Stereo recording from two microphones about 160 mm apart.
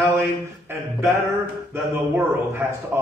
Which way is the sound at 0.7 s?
15° right (ahead or behind).